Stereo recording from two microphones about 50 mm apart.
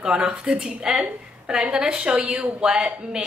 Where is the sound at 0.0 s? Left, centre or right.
Centre.